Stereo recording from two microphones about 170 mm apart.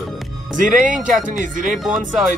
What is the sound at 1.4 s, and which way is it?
Speech, 50° right (ahead or behind).